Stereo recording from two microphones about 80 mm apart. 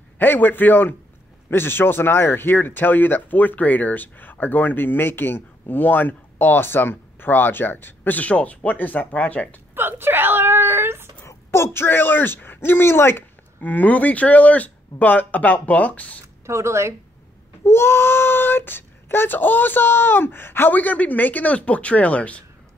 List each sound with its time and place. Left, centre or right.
0.2 s speech: left
9.8 s wail: right
11.2 s speech: left; by 16.2 s centre
16.4 s speech: right
17.6 s speech: left